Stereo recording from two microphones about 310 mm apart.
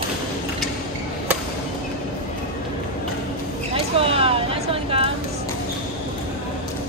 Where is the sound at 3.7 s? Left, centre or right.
Centre.